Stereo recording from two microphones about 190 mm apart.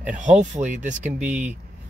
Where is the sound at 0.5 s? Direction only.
40° right (ahead or behind).